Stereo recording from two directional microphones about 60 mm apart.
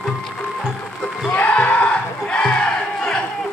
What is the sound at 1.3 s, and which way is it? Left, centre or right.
Crowd, left.